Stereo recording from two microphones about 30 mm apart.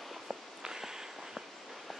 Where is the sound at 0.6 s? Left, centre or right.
Centre.